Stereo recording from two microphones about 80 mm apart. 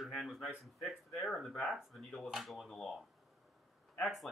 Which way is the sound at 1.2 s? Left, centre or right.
Centre.